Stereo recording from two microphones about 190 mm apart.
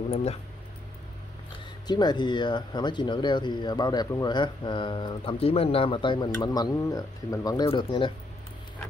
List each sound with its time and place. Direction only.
0.1 s speech: 35° left (ahead or behind)
1.9 s speech: 20° left (ahead or behind)